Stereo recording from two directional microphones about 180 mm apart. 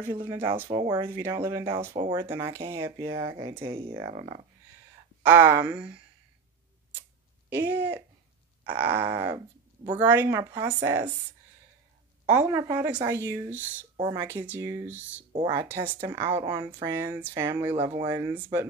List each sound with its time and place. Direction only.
0.1 s speech: 20° right (ahead or behind)
3.6 s speech: 30° right (ahead or behind)
5.2 s speech: 10° right (ahead or behind)
7.4 s speech: 10° right (ahead or behind)
12.3 s speech: 15° right (ahead or behind)
13.9 s speech: 20° right (ahead or behind)
15.3 s speech: 25° right (ahead or behind)
16.4 s speech: 25° right (ahead or behind)
17.7 s speech: 30° right (ahead or behind)
18.0 s speech: 15° right (ahead or behind)